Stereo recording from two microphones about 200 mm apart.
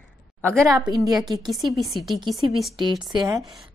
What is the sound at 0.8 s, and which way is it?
Speech, 20° right (ahead or behind).